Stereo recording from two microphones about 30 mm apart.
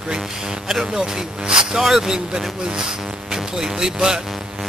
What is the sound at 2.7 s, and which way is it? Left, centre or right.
Speech, right.